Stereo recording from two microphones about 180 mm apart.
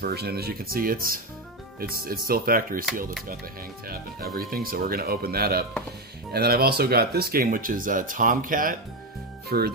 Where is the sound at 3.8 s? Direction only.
55° right (ahead or behind).